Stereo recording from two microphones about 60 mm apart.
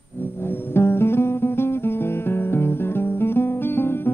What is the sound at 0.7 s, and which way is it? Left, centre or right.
Music, left.